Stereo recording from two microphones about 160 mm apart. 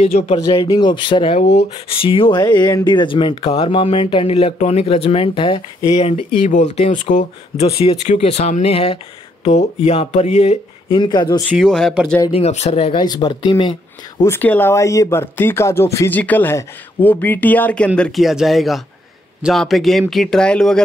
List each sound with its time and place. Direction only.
0.0 s speech: 40° left (ahead or behind)
0.4 s speech: 25° left (ahead or behind)
6.4 s speech: 50° left (ahead or behind)
11.0 s speech: 30° left (ahead or behind)
11.4 s speech: centre (ahead or behind)
12.3 s speech: 40° left (ahead or behind)
13.0 s speech: 25° left (ahead or behind)
14.2 s speech: 15° left (ahead or behind)